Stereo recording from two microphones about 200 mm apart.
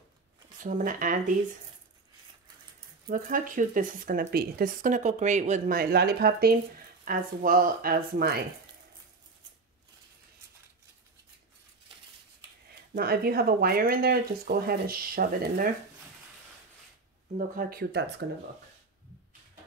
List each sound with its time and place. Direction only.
0.6 s speech: 40° right (ahead or behind)
3.1 s speech: 40° right (ahead or behind)
12.9 s speech: 50° right (ahead or behind)
17.4 s speech: 50° right (ahead or behind)